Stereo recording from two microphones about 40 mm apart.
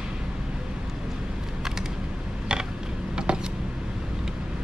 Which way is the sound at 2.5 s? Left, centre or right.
Centre.